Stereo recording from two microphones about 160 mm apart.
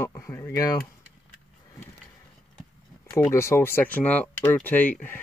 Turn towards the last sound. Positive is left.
turn(degrees=10)  # may be behind; listen again after turning